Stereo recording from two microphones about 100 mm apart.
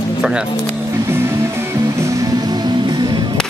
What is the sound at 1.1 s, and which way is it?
Music, 25° right (ahead or behind).